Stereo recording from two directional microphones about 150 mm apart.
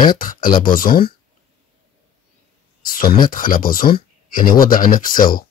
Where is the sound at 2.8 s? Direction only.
70° left (ahead or behind).